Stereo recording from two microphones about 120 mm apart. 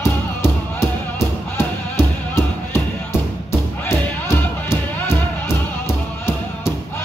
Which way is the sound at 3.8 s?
20° left (ahead or behind).